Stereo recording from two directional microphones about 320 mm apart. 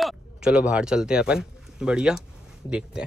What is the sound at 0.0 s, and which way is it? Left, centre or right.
Speech, centre.